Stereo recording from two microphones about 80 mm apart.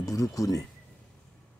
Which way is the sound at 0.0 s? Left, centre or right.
Left.